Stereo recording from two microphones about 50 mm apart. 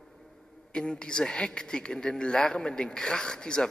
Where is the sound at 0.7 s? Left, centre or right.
Centre.